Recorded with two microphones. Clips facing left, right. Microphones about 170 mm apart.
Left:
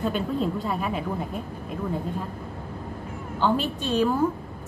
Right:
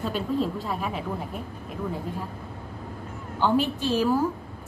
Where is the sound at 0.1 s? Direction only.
Centre (ahead or behind).